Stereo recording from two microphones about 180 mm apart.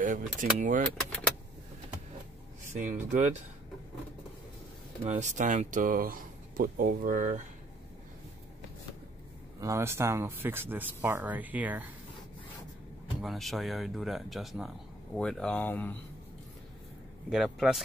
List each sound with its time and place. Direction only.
0.0 s speech: 45° right (ahead or behind)
2.7 s speech: 45° right (ahead or behind)
5.0 s speech: 40° right (ahead or behind)
9.6 s speech: 15° right (ahead or behind)
13.2 s speech: centre (ahead or behind)
17.3 s speech: 5° right (ahead or behind)